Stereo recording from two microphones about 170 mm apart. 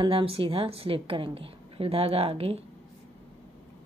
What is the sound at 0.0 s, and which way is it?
Speech, 30° right (ahead or behind).